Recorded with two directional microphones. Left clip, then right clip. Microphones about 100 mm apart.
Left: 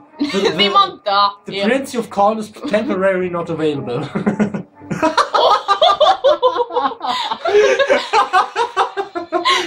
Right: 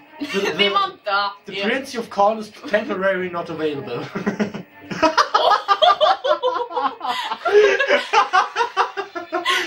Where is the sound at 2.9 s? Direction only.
10° right (ahead or behind).